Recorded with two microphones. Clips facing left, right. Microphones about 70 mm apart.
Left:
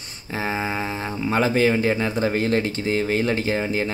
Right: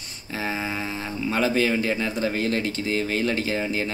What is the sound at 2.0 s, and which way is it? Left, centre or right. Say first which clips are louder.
Speech: left 3 dB; left.